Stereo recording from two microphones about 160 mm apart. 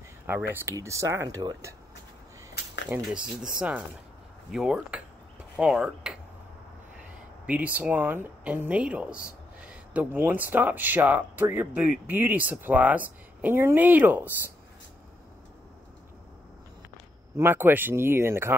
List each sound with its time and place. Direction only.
0.3 s speech: 15° right (ahead or behind)
2.9 s speech: 10° right (ahead or behind)
7.4 s speech: 10° right (ahead or behind)
17.4 s speech: 15° right (ahead or behind)